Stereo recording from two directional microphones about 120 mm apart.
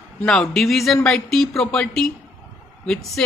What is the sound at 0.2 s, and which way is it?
A woman's voice, 5° left (ahead or behind).